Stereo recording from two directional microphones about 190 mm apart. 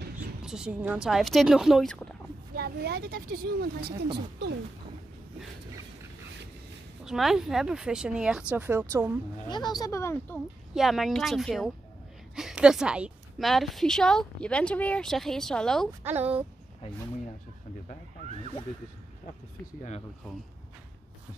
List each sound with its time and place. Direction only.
0.4 s a woman's voice: 5° right (ahead or behind)
2.5 s a woman's voice: 55° right (ahead or behind)
7.1 s a woman's voice: centre (ahead or behind)
9.5 s speech: 20° left (ahead or behind)
10.7 s a woman's voice: centre (ahead or behind)
16.1 s speech: 10° right (ahead or behind)